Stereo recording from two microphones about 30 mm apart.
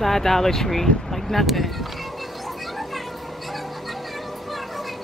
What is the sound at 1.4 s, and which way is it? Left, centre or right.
Speech, centre.